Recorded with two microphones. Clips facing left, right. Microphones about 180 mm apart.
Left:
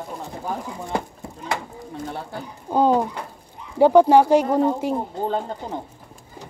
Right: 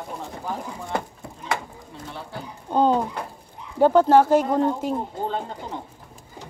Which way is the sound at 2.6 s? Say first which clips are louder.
Left 2 dB; 10° left (ahead or behind).